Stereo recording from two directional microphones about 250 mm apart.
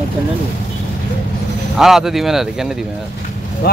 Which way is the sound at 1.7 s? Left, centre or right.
Centre.